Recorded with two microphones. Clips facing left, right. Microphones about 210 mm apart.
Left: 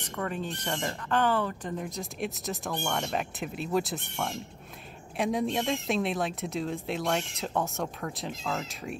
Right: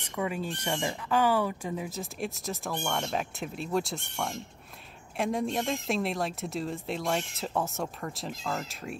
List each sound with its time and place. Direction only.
0.0 s speech: 10° right (ahead or behind)